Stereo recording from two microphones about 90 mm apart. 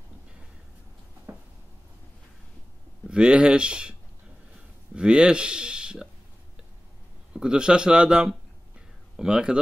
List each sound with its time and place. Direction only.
1.3 s a sound: 30° right (ahead or behind)
3.1 s speech: 10° right (ahead or behind)
4.9 s speech: 10° right (ahead or behind)
7.3 s speech: 10° right (ahead or behind)